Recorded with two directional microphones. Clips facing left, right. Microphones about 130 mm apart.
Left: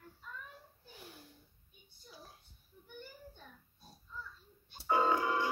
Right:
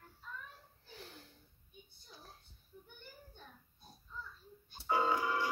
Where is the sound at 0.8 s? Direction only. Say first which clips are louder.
Right 2 dB; 10° left (ahead or behind).